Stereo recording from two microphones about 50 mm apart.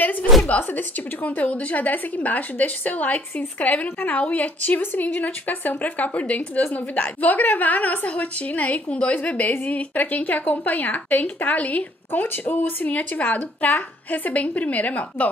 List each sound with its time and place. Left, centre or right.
0.5 s speech: left